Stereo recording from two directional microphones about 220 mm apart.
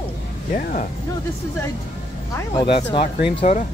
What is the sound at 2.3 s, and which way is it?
Speech, 20° left (ahead or behind).